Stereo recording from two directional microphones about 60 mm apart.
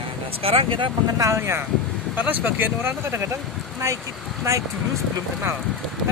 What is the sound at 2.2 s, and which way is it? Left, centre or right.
Speech, right.